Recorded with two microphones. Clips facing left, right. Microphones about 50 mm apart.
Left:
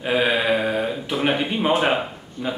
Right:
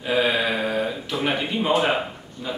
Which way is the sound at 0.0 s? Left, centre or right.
Centre.